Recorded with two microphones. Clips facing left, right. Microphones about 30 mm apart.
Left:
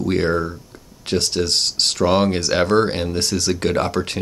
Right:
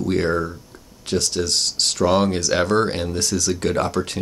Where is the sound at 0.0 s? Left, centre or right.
Left.